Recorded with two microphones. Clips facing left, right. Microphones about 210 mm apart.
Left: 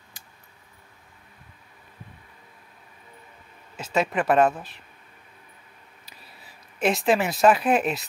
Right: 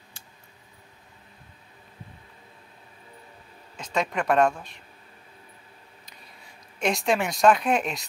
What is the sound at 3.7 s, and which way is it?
Speech, 5° left (ahead or behind).